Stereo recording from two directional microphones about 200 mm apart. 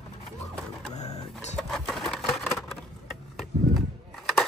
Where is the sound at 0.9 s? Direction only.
35° left (ahead or behind).